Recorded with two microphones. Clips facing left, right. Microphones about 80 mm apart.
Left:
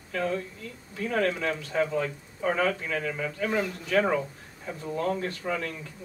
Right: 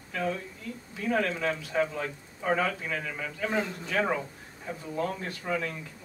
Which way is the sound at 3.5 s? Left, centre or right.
Centre.